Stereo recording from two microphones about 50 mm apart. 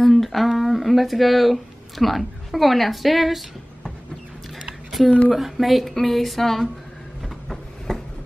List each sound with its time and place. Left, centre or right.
0.0 s speech: centre
5.3 s speech: centre
7.4 s a sound: centre